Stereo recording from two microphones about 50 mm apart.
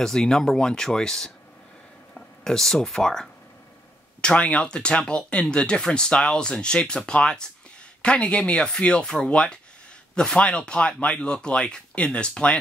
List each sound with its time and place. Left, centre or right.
0.0 s speech: centre
4.2 s speech: left